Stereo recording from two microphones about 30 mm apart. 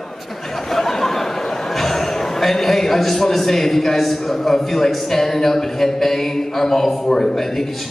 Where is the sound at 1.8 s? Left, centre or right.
Centre.